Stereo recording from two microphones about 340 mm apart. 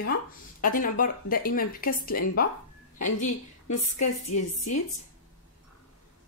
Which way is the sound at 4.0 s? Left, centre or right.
Left.